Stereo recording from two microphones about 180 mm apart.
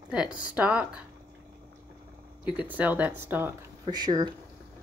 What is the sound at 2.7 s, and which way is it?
Speech, 10° right (ahead or behind).